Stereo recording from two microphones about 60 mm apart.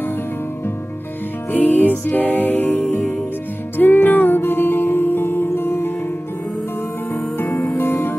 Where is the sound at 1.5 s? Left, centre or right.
Left.